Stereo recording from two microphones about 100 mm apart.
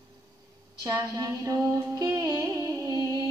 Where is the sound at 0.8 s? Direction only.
40° right (ahead or behind).